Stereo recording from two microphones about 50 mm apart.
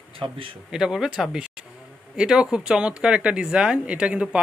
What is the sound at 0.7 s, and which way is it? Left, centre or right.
Speech, centre.